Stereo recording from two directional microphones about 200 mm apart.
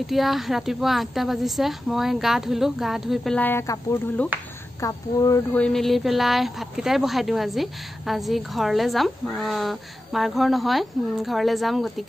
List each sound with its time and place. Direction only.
0.0 s a woman's voice: centre (ahead or behind); by 5.6 s 15° left (ahead or behind)
5.6 s a woman's voice: centre (ahead or behind)